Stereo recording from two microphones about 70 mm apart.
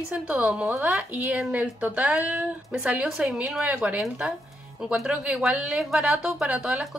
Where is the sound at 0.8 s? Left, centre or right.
Centre.